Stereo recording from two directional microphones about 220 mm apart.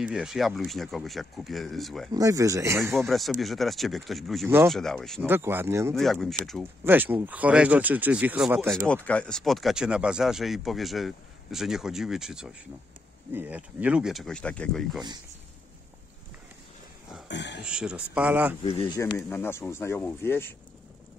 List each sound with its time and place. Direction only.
0.0 s speech: centre (ahead or behind)
2.1 s speech: 15° right (ahead or behind)
2.8 s speech: centre (ahead or behind)
5.2 s speech: 10° right (ahead or behind)
5.9 s speech: centre (ahead or behind)
8.7 s speech: 5° left (ahead or behind)
17.3 s a sound: 50° left (ahead or behind)
17.6 s speech: 5° right (ahead or behind)
18.6 s speech: 25° left (ahead or behind)
19.1 s speech: 10° left (ahead or behind)